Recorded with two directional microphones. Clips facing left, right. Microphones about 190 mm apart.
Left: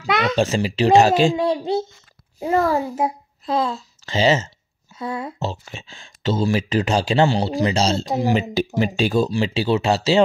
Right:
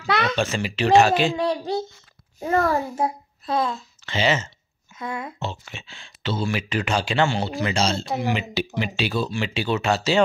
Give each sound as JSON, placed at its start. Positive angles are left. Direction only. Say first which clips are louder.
{"t": 0.0, "sound": "a sound", "louder": "left 2 dB", "side_deg": 15}
{"t": 0.4, "sound": "speech", "louder": "left 5 dB", "side_deg": 35}
{"t": 1.3, "sound": "a child's voice", "louder": "left 3 dB", "side_deg": 20}
{"t": 3.5, "sound": "a child's voice", "louder": "left 2 dB", "side_deg": 35}